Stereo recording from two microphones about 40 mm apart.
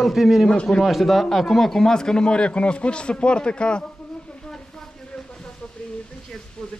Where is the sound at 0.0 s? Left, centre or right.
Centre; by 3.8 s left.